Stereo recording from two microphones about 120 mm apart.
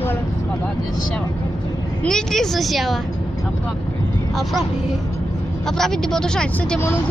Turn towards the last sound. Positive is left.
turn(degrees=5)  # may be behind; listen again after turning